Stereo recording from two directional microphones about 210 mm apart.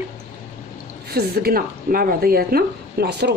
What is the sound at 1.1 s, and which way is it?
Speech, 45° right (ahead or behind).